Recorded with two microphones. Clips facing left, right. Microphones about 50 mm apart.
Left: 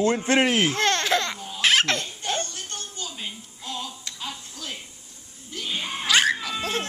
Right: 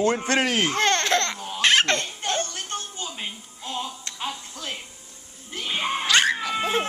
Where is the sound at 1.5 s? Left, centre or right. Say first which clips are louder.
Right 1 dB; centre.